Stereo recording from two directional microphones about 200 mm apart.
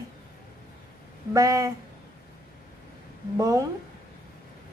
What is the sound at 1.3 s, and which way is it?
Speech, 15° right (ahead or behind).